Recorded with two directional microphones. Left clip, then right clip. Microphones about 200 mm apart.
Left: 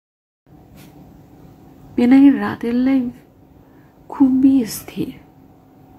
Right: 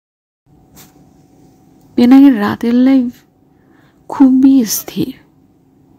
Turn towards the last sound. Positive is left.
turn(degrees=-45)  # may be behind; listen again after turning